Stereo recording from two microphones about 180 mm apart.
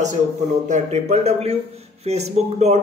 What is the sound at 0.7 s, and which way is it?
Speech, 40° right (ahead or behind).